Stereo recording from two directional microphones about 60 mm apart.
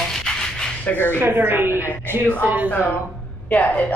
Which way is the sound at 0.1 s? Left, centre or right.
Centre.